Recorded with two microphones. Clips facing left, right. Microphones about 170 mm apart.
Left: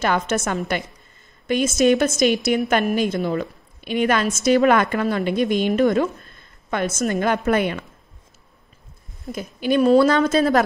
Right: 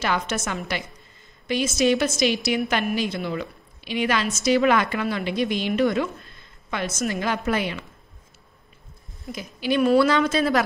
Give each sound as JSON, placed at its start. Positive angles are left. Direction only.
{"t": 0.0, "sound": "a woman's voice", "side_deg": 50}
{"t": 9.3, "sound": "a woman's voice", "side_deg": 50}